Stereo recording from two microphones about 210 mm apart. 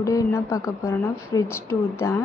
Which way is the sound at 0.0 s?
15° left (ahead or behind).